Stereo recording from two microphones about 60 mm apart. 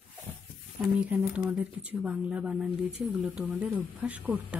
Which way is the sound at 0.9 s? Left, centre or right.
Right.